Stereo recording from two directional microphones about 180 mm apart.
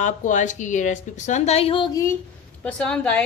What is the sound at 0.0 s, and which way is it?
A woman's voice, 45° left (ahead or behind).